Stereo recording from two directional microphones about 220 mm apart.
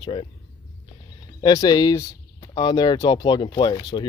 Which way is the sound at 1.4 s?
20° left (ahead or behind).